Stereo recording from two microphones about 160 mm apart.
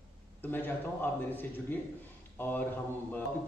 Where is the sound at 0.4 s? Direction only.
10° left (ahead or behind).